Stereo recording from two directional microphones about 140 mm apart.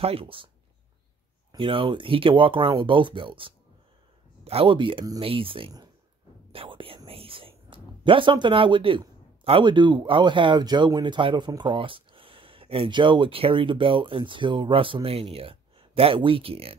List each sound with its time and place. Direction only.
0.0 s speech: 40° right (ahead or behind)
1.5 s speech: 35° right (ahead or behind)
6.5 s whispering: 40° right (ahead or behind)
7.1 s a sound: 40° right (ahead or behind)
9.4 s speech: 40° right (ahead or behind)